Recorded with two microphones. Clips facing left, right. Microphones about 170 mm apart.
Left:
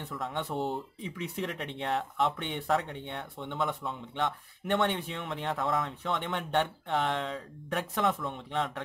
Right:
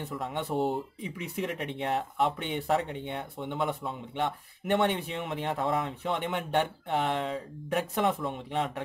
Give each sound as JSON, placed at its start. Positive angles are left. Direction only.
{"t": 0.2, "sound": "speech", "side_deg": -10}
{"t": 8.0, "sound": "speech", "side_deg": -25}
{"t": 8.3, "sound": "speech", "side_deg": -10}